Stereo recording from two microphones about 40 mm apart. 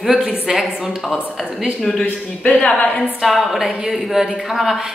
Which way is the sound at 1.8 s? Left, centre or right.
Centre.